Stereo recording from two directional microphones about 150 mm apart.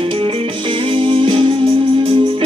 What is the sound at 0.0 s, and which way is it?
Music, 35° right (ahead or behind).